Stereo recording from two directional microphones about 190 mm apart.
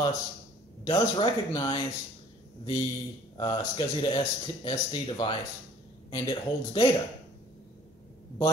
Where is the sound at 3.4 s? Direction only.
25° left (ahead or behind).